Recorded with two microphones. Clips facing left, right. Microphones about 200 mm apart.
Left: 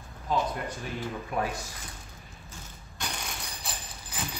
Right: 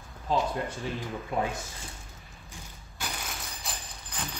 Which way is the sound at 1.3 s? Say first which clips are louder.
Right 2 dB; 25° right (ahead or behind).